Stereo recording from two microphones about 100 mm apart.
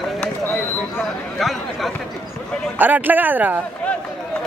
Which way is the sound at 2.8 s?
15° right (ahead or behind).